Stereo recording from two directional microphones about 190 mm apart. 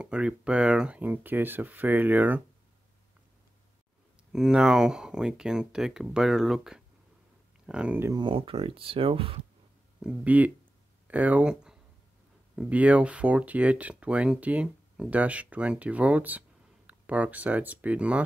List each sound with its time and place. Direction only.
0.0 s speech: 5° right (ahead or behind)
4.3 s speech: 5° right (ahead or behind)
8.2 s speech: 25° right (ahead or behind)
10.0 s speech: 10° right (ahead or behind)